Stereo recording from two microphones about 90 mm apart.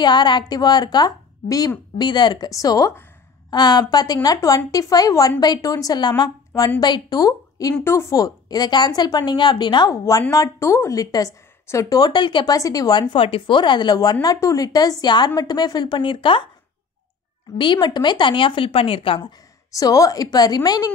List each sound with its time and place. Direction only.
0.0 s a woman's voice: 55° left (ahead or behind)
10.3 s speech: 35° left (ahead or behind); by 12.5 s 60° left (ahead or behind)
12.5 s speech: 40° left (ahead or behind)
13.1 s speech: 75° left (ahead or behind); by 14.1 s 50° left (ahead or behind)
14.2 s speech: 40° left (ahead or behind); by 16.4 s 65° left (ahead or behind)
17.7 s a woman's voice: 55° left (ahead or behind); by 19.2 s 85° left
19.7 s speech: 40° left (ahead or behind)